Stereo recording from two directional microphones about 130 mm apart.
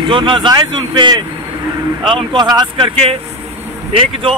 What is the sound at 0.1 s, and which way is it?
Speech, 40° right (ahead or behind).